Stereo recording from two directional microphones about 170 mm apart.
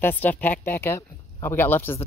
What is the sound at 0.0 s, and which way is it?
Speech, 10° left (ahead or behind).